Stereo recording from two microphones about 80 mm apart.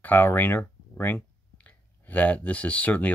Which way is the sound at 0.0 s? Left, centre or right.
Left.